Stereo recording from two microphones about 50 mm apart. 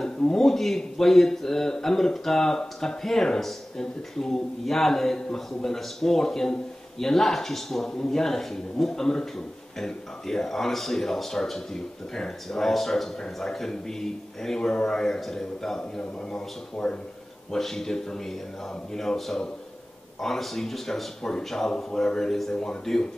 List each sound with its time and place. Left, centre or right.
0.0 s a man's voice: centre
17.5 s a man's voice: centre